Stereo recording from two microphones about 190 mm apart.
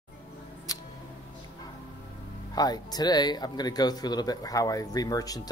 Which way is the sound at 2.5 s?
20° left (ahead or behind).